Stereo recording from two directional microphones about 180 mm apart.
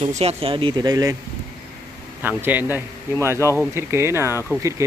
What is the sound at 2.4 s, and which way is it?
Speech, 10° right (ahead or behind).